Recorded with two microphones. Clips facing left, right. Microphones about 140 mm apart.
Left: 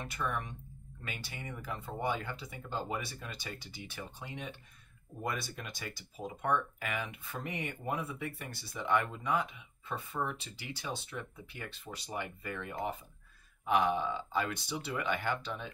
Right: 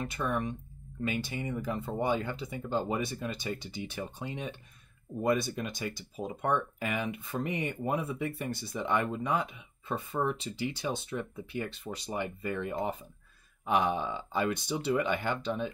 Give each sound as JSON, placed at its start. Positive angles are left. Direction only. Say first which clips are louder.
{"t": 0.2, "sound": "speech", "louder": "right 4 dB", "side_deg": -30}